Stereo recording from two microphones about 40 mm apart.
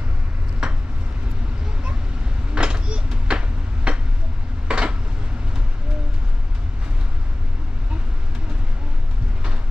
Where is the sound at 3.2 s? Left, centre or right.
Right.